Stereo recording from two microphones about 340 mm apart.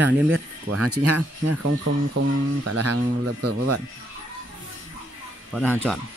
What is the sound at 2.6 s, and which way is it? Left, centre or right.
Speech, right.